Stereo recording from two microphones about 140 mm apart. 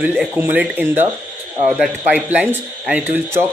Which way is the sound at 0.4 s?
10° right (ahead or behind).